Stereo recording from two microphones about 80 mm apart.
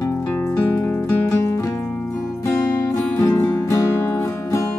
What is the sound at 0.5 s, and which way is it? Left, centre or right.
Music, left.